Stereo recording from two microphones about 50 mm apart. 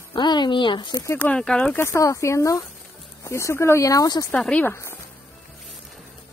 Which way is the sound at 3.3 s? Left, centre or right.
Left.